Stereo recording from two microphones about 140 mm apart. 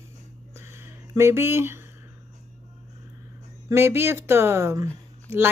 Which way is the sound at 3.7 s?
15° right (ahead or behind).